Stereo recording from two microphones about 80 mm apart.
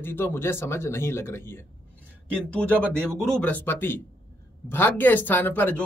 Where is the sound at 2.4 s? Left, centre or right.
Centre.